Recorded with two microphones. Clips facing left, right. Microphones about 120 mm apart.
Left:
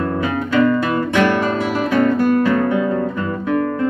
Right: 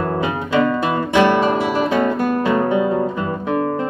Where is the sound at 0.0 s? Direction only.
20° right (ahead or behind).